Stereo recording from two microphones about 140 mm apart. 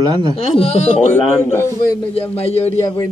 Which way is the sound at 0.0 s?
30° right (ahead or behind).